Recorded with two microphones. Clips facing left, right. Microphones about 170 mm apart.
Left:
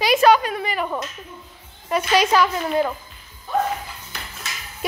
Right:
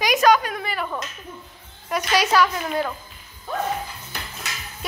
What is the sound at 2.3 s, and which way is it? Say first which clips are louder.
Speech: left 2 dB; 15° left (ahead or behind).